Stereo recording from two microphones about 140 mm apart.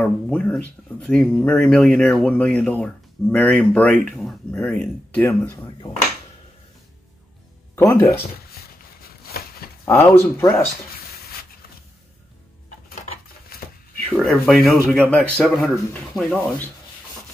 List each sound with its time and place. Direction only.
0.0 s speech: 10° left (ahead or behind)
7.7 s speech: 15° left (ahead or behind)
9.3 s a sound: 90° left
9.8 s speech: 15° left (ahead or behind)
13.5 s a sound: 90° left
14.0 s speech: centre (ahead or behind)